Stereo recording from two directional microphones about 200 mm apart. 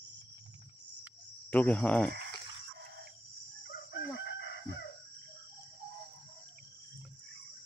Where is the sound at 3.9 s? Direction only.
60° left (ahead or behind).